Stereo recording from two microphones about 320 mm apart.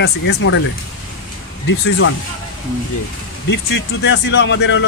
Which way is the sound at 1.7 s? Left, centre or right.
Left.